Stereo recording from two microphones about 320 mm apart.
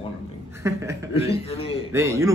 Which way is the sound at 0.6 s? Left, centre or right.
Centre.